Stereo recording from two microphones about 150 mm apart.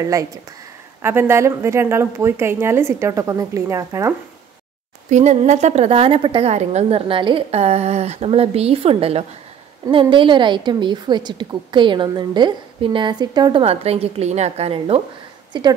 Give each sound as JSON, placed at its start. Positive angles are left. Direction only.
{"t": 0.0, "sound": "a woman's voice", "side_deg": -20}
{"t": 5.1, "sound": "a woman's voice", "side_deg": -50}
{"t": 15.5, "sound": "a woman's voice", "side_deg": -30}